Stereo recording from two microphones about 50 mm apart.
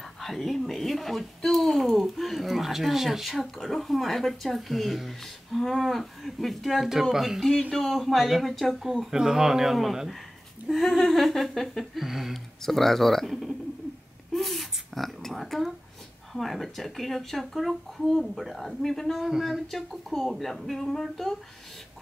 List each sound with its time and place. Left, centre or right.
0.2 s speech: centre
9.1 s speech: centre
12.6 s speech: centre
14.3 s a sound: centre
16.3 s speech: centre